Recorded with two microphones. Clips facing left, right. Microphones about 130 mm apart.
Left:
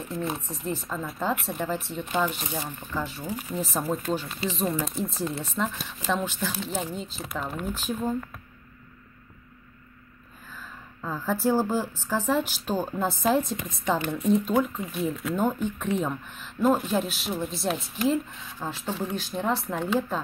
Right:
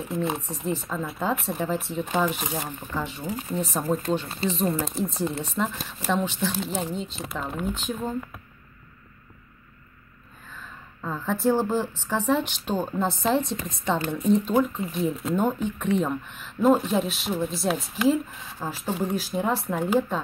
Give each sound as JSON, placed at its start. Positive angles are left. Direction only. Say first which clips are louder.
{"t": 0.4, "sound": "speech", "louder": "right 3 dB", "side_deg": 0}
{"t": 10.5, "sound": "a sound", "louder": "even", "side_deg": 0}
{"t": 12.0, "sound": "speech", "louder": "right 1 dB", "side_deg": 0}
{"t": 13.8, "sound": "speech", "louder": "even", "side_deg": -30}
{"t": 14.1, "sound": "speech", "louder": "right 2 dB", "side_deg": 5}